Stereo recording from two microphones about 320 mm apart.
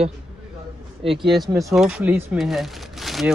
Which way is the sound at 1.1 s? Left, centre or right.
Centre.